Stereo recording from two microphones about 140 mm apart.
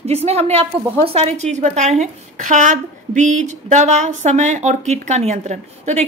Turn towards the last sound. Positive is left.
turn(degrees=-55)  # may be behind; listen again after turning